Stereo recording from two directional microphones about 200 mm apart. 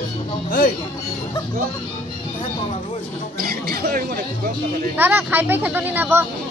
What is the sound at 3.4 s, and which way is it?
Speech, 50° right (ahead or behind).